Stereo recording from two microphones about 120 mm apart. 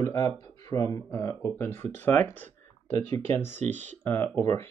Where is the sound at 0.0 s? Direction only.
25° left (ahead or behind).